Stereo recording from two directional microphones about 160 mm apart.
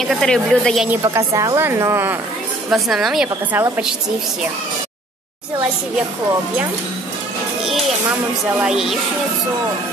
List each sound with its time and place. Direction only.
0.0 s a woman's voice: centre (ahead or behind)
1.0 s a woman's voice: 20° right (ahead or behind)
2.7 s a woman's voice: centre (ahead or behind)
8.6 s a woman's voice: centre (ahead or behind)